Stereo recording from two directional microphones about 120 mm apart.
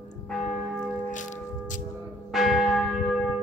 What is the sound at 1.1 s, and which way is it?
Bell, 90° left.